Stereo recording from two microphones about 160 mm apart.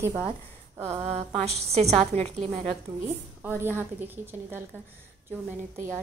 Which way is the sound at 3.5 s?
15° right (ahead or behind).